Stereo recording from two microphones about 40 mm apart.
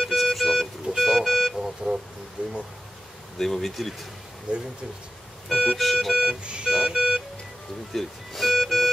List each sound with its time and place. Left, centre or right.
0.0 s music: centre
0.9 s vehicle: centre
3.3 s speech: centre
4.5 s speech: right
5.5 s organ: centre
6.4 s music: right
7.9 s music: centre